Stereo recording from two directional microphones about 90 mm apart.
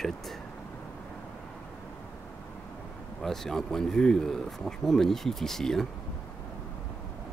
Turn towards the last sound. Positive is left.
turn(degrees=5)  # may be behind; listen again after turning